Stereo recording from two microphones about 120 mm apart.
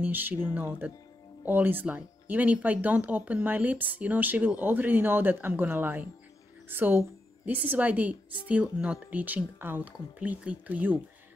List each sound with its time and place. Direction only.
0.0 s a woman's voice: 15° right (ahead or behind)